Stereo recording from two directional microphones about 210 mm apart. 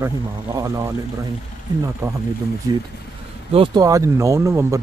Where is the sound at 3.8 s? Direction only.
15° right (ahead or behind).